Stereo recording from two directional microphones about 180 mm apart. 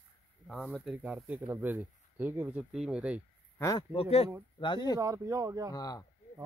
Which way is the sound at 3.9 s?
35° left (ahead or behind).